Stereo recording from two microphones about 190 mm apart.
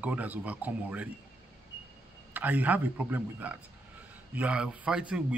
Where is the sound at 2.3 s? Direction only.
10° right (ahead or behind).